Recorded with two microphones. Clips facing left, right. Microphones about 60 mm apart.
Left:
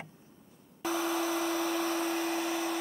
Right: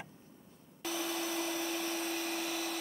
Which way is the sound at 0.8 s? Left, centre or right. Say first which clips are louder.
Left 6 dB; left.